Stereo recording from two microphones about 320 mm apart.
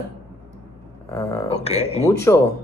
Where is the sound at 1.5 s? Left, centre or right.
Centre.